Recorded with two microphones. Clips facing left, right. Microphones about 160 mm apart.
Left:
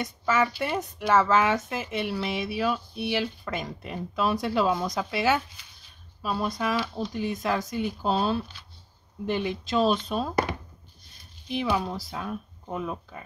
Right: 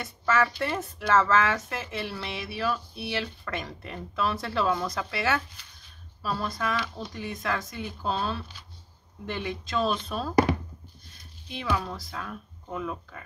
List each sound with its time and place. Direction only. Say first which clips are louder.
0.0 s speech: left 1 dB; 15° left (ahead or behind)
11.5 s speech: left 3 dB; 20° left (ahead or behind)